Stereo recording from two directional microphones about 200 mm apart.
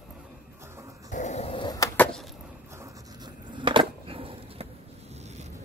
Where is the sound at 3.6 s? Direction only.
25° right (ahead or behind).